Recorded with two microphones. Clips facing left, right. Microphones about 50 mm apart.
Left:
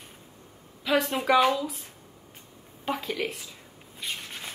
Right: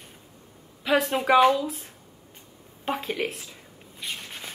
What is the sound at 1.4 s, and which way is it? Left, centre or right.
Speech, right.